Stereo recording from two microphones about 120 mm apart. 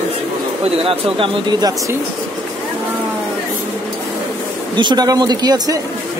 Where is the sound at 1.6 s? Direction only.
30° right (ahead or behind).